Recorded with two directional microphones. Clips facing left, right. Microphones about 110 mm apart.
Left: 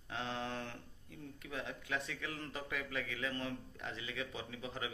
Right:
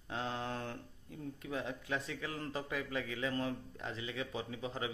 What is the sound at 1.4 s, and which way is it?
A man's voice, 30° right (ahead or behind).